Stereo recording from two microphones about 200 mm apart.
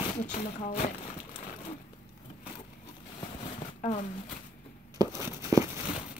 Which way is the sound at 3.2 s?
25° left (ahead or behind).